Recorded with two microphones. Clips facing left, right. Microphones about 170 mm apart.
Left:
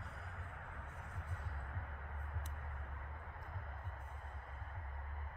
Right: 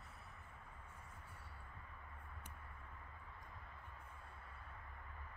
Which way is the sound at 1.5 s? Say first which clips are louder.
Left 7 dB; 65° left (ahead or behind).